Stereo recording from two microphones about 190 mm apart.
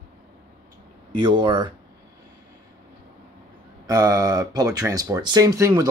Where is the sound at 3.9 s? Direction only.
20° right (ahead or behind).